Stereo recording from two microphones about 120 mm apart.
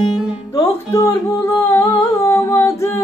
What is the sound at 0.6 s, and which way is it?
Humming, 30° left (ahead or behind).